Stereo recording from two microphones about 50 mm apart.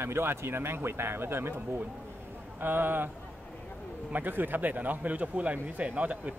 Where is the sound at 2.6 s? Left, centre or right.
Right.